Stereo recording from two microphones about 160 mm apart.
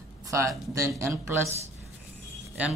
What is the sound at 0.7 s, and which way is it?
Speech, 20° right (ahead or behind).